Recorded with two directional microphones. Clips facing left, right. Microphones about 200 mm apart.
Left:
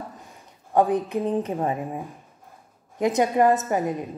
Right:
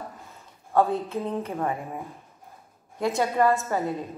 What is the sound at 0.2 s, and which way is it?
A woman's voice, 15° left (ahead or behind).